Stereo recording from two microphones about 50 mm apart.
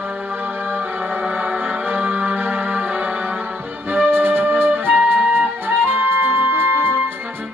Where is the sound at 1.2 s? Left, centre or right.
Right.